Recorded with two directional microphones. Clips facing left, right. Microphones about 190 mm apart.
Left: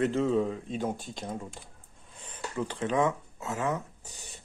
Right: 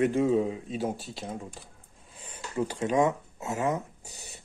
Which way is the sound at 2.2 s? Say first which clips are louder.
Right 3 dB; 10° right (ahead or behind).